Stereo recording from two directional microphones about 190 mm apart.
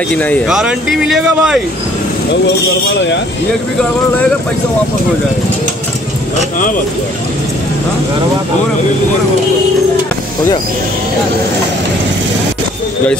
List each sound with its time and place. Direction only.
0.1 s speech: 10° left (ahead or behind)
0.5 s speech: 5° right (ahead or behind)
2.8 s speech: 65° left (ahead or behind)